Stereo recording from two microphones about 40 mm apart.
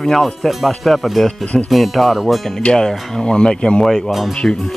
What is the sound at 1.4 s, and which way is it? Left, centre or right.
Speech, left.